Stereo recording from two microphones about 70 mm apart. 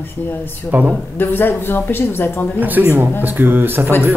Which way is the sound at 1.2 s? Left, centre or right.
Left.